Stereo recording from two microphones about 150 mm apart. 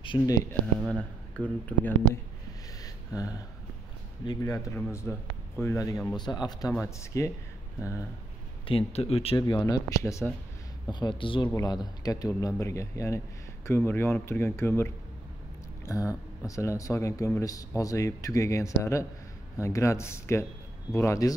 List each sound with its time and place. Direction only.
0.3 s speech: 20° left (ahead or behind)
0.8 s speech: 5° left (ahead or behind)
2.8 s a sound: 25° left (ahead or behind)
4.2 s speech: 25° left (ahead or behind)
8.6 s speech: 40° left (ahead or behind)
9.4 s speech: 30° left (ahead or behind)
10.9 s speech: 30° left (ahead or behind)